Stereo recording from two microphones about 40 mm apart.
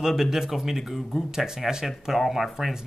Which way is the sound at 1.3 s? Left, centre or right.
Centre.